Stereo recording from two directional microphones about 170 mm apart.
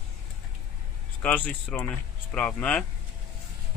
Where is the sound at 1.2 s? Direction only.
10° left (ahead or behind).